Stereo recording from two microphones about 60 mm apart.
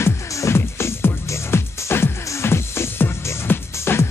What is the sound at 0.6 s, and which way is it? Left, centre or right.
Music, left.